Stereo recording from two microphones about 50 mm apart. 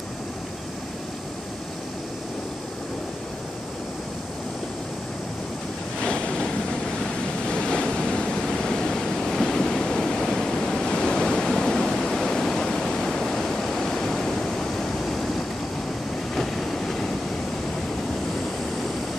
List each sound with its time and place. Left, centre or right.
5.9 s waves: centre
16.3 s train: centre